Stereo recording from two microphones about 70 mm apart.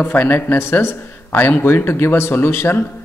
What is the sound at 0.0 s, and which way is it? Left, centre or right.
A man's voice, left.